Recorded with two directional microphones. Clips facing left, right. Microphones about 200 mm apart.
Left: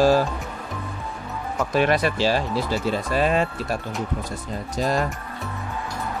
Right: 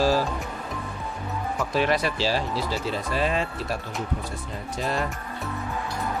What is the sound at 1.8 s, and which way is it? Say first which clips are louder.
Speech: left 4 dB; 50° left (ahead or behind).